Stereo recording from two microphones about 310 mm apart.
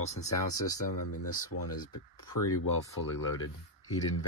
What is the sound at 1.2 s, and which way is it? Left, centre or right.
Speech, left.